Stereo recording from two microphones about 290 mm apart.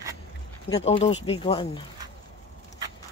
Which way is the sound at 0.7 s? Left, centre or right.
Centre.